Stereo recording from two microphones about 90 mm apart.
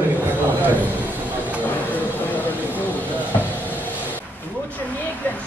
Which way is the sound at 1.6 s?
20° left (ahead or behind).